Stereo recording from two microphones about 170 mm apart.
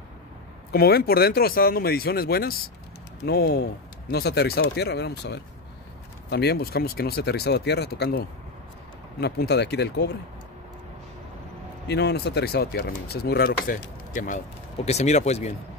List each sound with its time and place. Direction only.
0.7 s speech: 65° left (ahead or behind); by 5.4 s 85° left
6.3 s speech: 70° left (ahead or behind)
11.9 s speech: 75° left (ahead or behind); by 15.5 s 40° left (ahead or behind)